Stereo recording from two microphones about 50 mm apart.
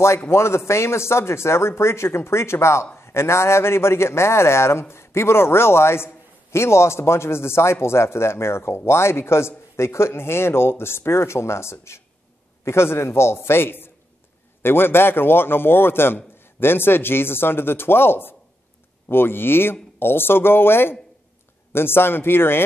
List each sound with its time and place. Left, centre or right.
0.3 s speech: left